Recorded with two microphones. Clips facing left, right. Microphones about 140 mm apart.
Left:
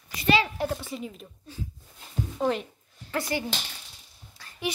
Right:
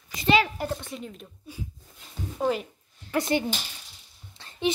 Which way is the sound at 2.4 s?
5° right (ahead or behind).